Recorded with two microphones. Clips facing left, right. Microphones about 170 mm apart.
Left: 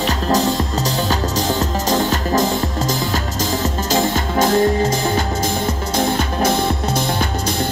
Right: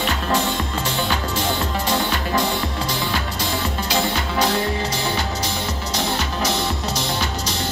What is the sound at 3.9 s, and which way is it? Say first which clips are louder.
Music: left 5 dB; 45° left (ahead or behind).